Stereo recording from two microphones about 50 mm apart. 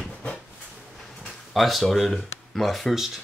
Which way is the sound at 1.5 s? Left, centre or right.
Centre.